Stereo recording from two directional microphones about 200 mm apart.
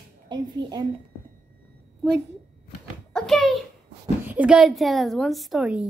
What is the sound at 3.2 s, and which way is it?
A woman's voice, centre (ahead or behind).